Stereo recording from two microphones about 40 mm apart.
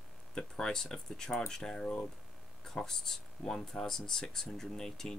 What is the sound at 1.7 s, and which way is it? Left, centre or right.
Speech, left.